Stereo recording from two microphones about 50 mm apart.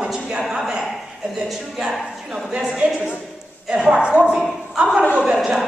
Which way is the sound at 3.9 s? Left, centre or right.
Right.